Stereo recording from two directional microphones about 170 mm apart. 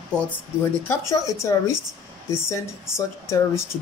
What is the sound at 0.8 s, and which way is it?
Speech, 20° left (ahead or behind).